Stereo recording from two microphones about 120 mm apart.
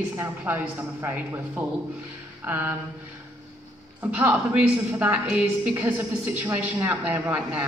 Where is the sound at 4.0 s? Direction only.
15° right (ahead or behind).